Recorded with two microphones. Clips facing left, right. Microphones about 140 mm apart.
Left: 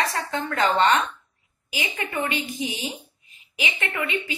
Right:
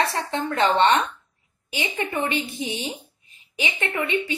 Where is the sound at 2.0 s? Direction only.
35° right (ahead or behind).